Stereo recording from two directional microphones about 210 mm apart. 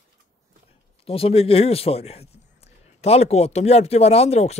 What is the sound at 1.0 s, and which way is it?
Speech, 25° left (ahead or behind).